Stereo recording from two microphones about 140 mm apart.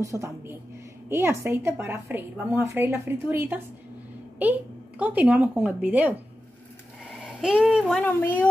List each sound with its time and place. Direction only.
0.0 s a woman's voice: 20° right (ahead or behind)
7.2 s a child's voice: 5° right (ahead or behind)
8.0 s speech: 10° left (ahead or behind)